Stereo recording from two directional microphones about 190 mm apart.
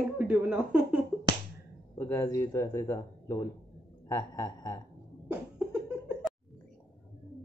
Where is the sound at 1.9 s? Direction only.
10° left (ahead or behind).